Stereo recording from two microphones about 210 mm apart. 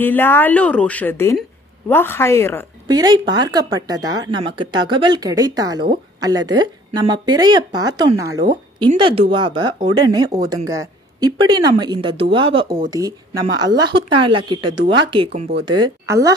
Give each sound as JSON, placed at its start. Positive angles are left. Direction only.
{"t": 0.0, "sound": "speech", "side_deg": 10}
{"t": 2.9, "sound": "speech", "side_deg": -20}
{"t": 15.6, "sound": "speech", "side_deg": -20}